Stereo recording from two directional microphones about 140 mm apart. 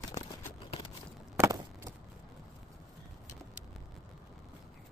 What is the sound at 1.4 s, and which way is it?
Vehicle, 20° right (ahead or behind).